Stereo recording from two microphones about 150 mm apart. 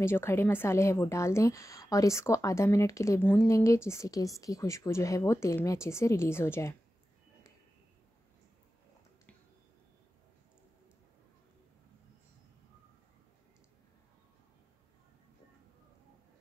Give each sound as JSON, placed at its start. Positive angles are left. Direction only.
{"t": 0.0, "sound": "a woman's voice", "side_deg": 15}